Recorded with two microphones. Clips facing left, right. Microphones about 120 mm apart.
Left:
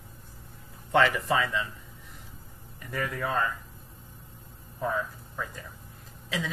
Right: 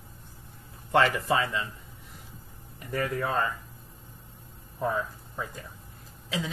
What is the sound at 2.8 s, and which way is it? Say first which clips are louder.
Speech: right 3 dB; 30° right (ahead or behind).